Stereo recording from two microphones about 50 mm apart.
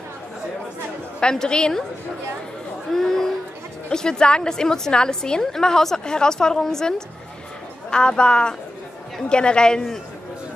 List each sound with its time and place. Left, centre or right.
1.3 s a woman's voice: centre
2.9 s a sound: centre
3.9 s a woman's voice: centre